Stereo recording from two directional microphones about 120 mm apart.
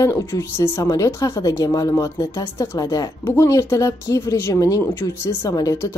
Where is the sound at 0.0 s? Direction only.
25° left (ahead or behind).